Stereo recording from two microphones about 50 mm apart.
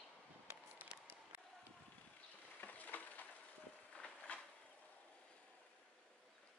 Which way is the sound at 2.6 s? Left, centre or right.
Left.